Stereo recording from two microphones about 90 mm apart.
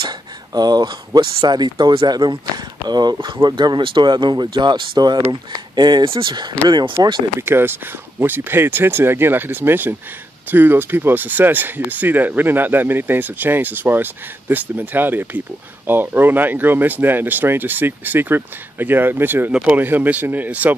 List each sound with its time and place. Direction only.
0.5 s speech: 50° right (ahead or behind)
7.3 s speech: 25° right (ahead or behind)